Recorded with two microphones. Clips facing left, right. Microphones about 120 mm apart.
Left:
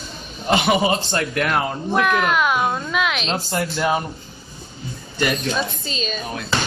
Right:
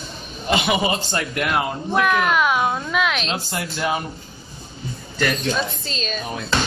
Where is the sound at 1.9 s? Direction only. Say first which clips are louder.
Even; centre (ahead or behind).